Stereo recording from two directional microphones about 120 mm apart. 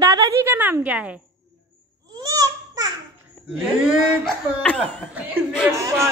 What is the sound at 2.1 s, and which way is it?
Babbling, 30° right (ahead or behind).